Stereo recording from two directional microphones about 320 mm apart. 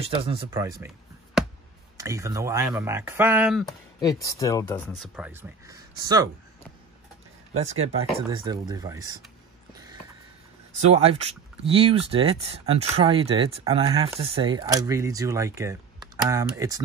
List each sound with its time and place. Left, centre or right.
0.0 s speech: centre
4.0 s speech: centre
8.3 s speech: centre
10.7 s speech: right